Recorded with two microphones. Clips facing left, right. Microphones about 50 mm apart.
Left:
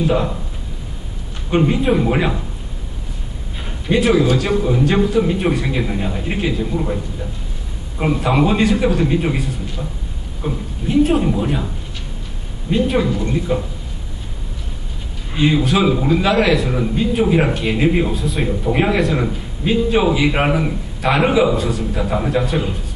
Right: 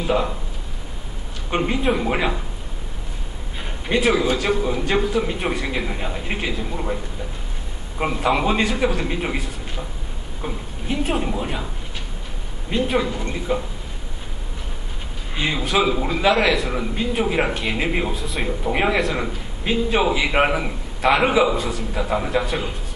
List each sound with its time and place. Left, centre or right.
0.0 s a man's voice: centre
1.5 s a man's voice: centre
3.9 s a man's voice: centre
8.0 s a man's voice: centre
12.7 s a man's voice: centre
15.3 s a man's voice: centre